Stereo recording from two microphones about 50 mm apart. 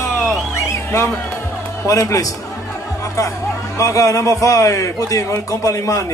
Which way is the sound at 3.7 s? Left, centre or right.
Left.